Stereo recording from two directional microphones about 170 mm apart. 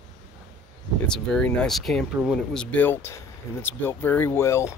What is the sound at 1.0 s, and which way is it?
Speech, 5° left (ahead or behind).